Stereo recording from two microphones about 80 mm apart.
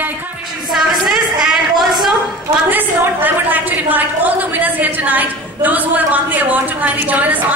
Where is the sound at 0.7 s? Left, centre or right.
Centre.